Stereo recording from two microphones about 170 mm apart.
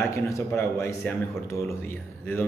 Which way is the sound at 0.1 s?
15° left (ahead or behind).